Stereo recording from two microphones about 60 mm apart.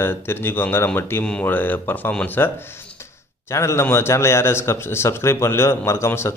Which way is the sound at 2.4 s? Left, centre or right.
Left.